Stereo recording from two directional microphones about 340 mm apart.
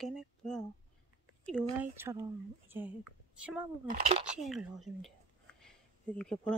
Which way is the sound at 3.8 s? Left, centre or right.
Right.